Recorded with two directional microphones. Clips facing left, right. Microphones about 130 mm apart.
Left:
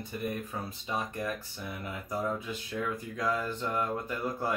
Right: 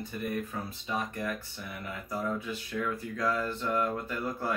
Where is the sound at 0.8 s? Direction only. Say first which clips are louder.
Even; 15° left (ahead or behind).